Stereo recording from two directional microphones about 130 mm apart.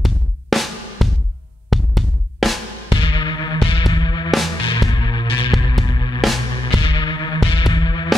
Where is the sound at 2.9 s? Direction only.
40° left (ahead or behind).